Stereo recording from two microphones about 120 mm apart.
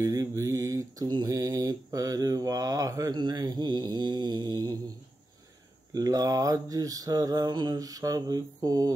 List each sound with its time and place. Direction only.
0.0 s mantra: 25° right (ahead or behind)
5.9 s mantra: 30° right (ahead or behind)